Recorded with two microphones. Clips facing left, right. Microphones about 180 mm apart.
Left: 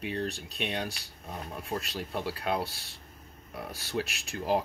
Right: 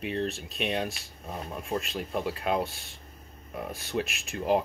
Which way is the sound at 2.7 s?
35° left (ahead or behind).